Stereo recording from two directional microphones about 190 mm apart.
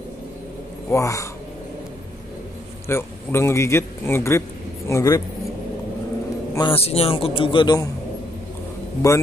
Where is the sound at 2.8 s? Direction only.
15° left (ahead or behind).